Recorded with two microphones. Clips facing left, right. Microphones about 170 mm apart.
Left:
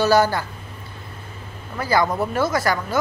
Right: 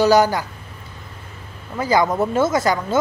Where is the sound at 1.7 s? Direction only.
20° right (ahead or behind).